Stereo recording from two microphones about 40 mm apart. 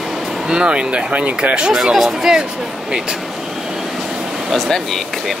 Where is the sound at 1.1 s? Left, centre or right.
Right.